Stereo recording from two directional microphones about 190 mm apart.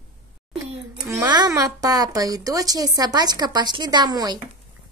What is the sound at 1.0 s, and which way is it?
A woman's voice, 20° right (ahead or behind).